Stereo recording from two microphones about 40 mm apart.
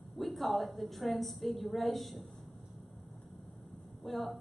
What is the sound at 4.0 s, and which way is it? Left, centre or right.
Speech, centre.